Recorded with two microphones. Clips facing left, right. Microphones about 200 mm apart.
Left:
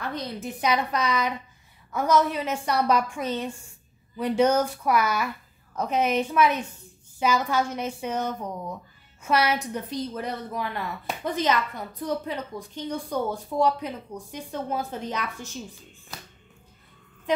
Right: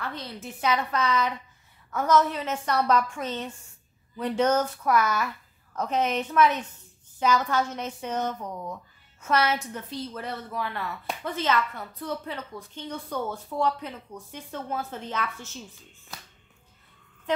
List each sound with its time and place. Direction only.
0.0 s a woman's voice: 15° left (ahead or behind)